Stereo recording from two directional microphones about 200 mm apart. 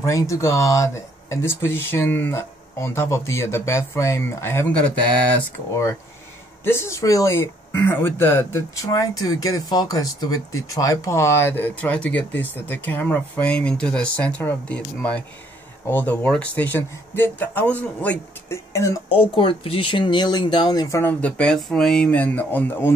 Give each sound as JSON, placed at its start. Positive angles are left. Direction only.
{"t": 0.0, "sound": "speech", "side_deg": 15}
{"t": 19.0, "sound": "speech", "side_deg": 25}